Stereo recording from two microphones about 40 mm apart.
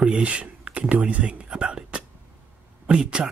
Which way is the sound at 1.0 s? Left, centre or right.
Right.